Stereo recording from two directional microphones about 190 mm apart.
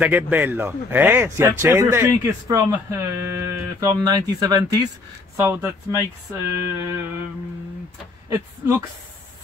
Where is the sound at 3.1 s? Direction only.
15° right (ahead or behind).